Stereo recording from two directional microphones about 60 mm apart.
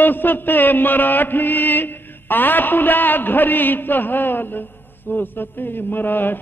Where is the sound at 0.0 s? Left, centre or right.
Left.